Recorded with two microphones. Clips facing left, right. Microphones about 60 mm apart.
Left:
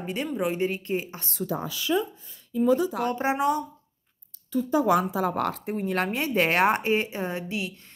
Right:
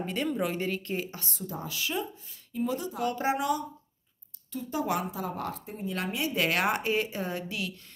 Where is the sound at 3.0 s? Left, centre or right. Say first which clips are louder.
Left 3 dB; left.